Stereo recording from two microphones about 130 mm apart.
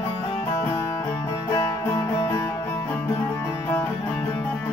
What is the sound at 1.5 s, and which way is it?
Music, 25° left (ahead or behind).